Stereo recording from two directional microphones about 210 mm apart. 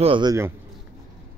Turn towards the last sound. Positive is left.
turn(degrees=-20)  # may be behind; listen again after turning